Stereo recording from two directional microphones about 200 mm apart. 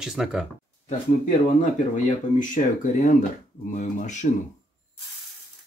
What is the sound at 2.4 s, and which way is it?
Speech, 40° left (ahead or behind).